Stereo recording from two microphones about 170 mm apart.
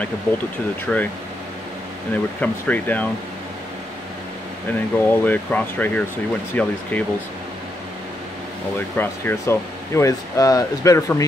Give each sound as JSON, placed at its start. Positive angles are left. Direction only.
{"t": 0.9, "sound": "speech", "side_deg": 5}
{"t": 2.4, "sound": "speech", "side_deg": 10}
{"t": 4.9, "sound": "speech", "side_deg": 10}
{"t": 8.9, "sound": "speech", "side_deg": 10}